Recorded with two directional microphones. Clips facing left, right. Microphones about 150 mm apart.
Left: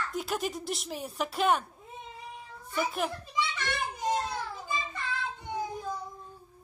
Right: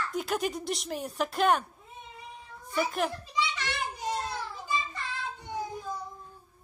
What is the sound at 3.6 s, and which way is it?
Children playing, 50° left (ahead or behind).